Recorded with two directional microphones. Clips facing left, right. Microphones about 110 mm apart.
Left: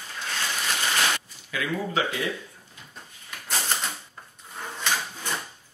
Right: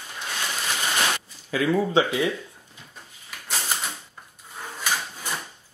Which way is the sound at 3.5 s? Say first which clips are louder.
Even; 5° right (ahead or behind).